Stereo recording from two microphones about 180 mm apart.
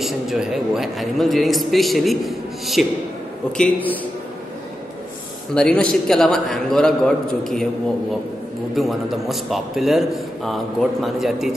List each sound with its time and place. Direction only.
0.0 s a man's voice: centre (ahead or behind)
5.5 s a man's voice: 5° left (ahead or behind)
8.7 s a man's voice: centre (ahead or behind)